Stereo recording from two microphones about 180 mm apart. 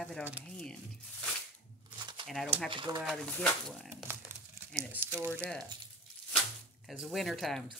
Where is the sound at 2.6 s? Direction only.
25° right (ahead or behind).